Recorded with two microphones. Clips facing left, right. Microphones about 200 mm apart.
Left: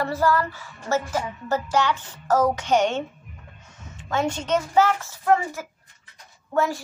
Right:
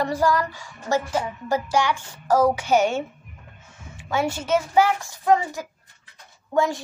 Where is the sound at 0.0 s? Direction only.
15° right (ahead or behind).